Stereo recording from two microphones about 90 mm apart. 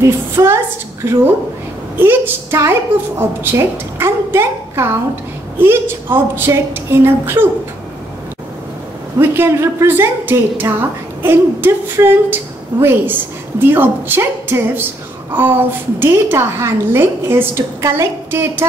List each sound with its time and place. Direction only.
0.0 s a woman's voice: 30° right (ahead or behind)
9.2 s a woman's voice: 25° right (ahead or behind)